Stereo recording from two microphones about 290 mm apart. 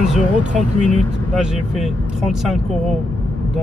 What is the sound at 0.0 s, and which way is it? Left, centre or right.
Speech, centre.